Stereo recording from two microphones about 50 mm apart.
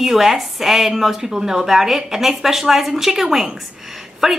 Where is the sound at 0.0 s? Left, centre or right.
Centre.